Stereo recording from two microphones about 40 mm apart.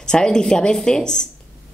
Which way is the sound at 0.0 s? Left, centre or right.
Centre.